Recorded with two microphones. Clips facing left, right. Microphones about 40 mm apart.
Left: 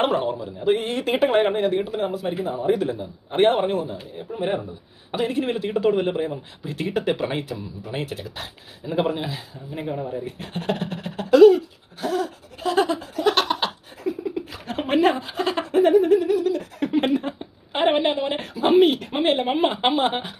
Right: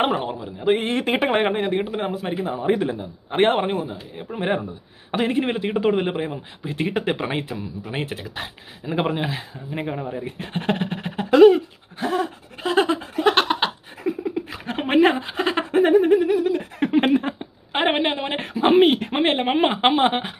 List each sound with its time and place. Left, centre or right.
0.0 s speech: centre
0.7 s speech: right
2.8 s speech: right
4.3 s speech: right
5.1 s a sound: right
16.9 s a woman's voice: right